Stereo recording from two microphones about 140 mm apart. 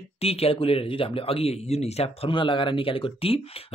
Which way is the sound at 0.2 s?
45° left (ahead or behind).